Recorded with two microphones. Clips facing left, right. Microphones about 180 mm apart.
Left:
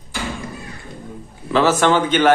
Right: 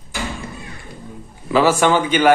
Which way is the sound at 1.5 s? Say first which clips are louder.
Right 1 dB; 10° right (ahead or behind).